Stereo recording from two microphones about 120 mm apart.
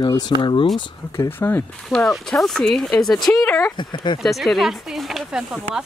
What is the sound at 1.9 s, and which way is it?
Speech, 5° left (ahead or behind).